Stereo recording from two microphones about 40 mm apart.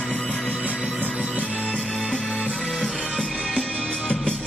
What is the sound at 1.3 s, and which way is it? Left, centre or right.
Music, left.